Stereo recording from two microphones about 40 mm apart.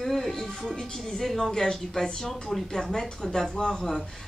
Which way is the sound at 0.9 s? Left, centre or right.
Centre.